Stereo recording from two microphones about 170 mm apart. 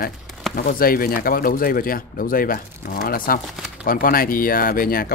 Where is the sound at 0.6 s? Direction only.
55° left (ahead or behind).